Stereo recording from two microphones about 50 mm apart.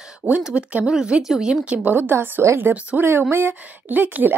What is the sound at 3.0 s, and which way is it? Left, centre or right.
Speech, right.